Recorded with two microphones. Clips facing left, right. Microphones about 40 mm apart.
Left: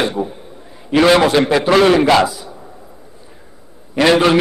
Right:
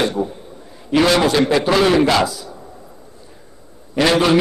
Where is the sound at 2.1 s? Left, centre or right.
Left.